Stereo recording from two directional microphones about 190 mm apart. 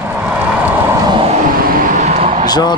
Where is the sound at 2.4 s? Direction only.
20° left (ahead or behind).